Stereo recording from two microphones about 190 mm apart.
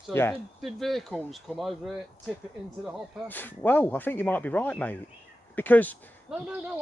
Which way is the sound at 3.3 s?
10° left (ahead or behind).